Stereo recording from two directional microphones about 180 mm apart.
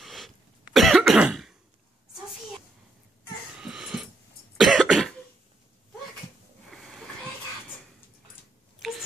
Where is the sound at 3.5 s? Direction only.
5° right (ahead or behind).